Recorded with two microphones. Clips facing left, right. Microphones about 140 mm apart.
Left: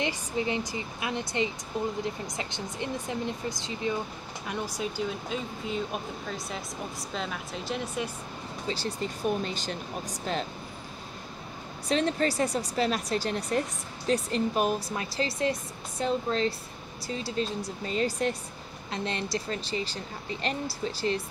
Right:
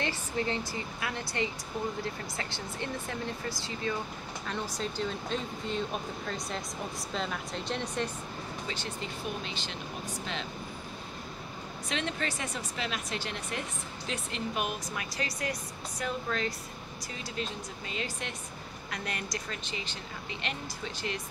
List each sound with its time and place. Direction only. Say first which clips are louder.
0.0 s speech: left 3 dB; 15° left (ahead or behind)
8.6 s speech: left 9 dB; 35° left (ahead or behind)
11.9 s speech: left 8 dB; 35° left (ahead or behind)
18.9 s speech: left 6 dB; 25° left (ahead or behind)